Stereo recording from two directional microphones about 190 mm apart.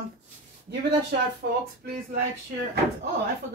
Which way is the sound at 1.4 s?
60° right (ahead or behind).